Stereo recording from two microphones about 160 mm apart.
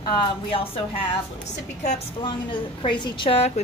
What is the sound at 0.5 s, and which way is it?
Speech, 35° left (ahead or behind).